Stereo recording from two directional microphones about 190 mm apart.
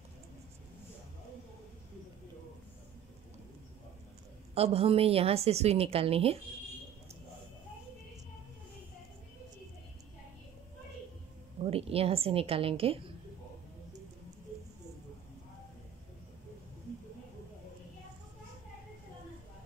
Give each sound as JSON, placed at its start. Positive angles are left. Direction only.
{"t": 4.6, "sound": "a woman's voice", "side_deg": -30}
{"t": 11.6, "sound": "a woman's voice", "side_deg": -30}